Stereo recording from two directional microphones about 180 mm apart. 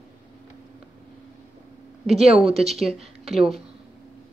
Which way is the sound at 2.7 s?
Centre (ahead or behind).